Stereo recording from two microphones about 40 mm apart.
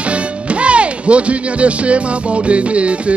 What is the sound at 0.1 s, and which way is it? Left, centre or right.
Speech, right.